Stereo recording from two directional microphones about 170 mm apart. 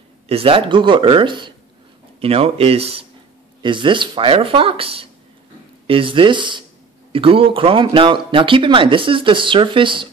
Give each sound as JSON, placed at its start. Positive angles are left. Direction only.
{"t": 0.3, "sound": "speech", "side_deg": -35}